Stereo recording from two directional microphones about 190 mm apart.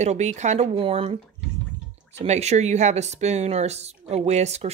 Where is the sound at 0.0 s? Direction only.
35° right (ahead or behind).